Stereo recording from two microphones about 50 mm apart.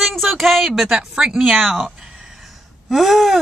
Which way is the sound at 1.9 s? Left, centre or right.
Centre.